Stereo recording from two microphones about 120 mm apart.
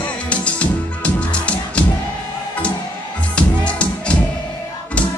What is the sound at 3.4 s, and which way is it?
Music, 10° left (ahead or behind).